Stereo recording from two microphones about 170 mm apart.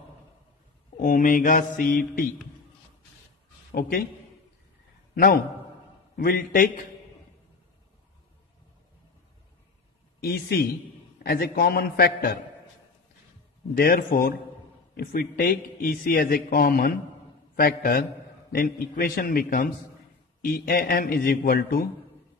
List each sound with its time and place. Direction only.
0.9 s speech: 55° left (ahead or behind)
5.1 s a man's voice: 60° left (ahead or behind)
10.2 s a man's voice: 60° left (ahead or behind)
13.7 s a man's voice: 60° left (ahead or behind)